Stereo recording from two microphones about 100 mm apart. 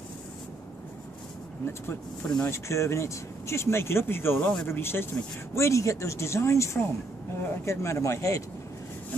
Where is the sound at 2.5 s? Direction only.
30° left (ahead or behind).